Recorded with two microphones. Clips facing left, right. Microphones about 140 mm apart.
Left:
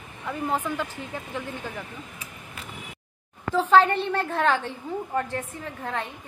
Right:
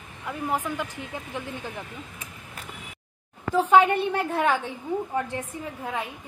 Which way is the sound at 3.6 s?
10° right (ahead or behind).